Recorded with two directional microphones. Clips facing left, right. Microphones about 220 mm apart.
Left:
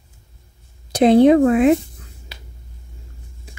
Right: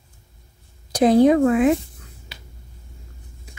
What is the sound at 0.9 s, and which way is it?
Speech, 25° left (ahead or behind).